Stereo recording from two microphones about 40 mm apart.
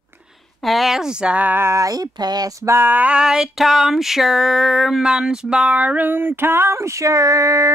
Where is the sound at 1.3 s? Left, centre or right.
Right.